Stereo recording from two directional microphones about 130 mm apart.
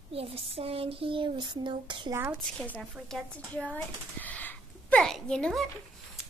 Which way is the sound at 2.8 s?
Centre (ahead or behind).